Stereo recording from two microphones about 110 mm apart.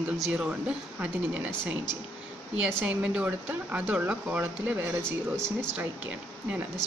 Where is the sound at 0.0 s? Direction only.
15° right (ahead or behind).